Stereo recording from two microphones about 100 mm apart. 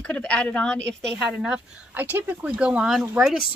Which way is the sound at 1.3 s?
10° right (ahead or behind).